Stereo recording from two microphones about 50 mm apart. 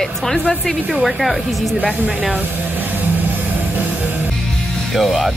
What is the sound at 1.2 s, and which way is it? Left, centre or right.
Speech, centre.